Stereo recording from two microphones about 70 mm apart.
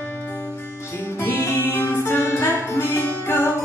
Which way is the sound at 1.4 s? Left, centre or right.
Left.